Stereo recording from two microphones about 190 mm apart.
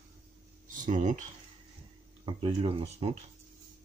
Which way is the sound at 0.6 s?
40° right (ahead or behind).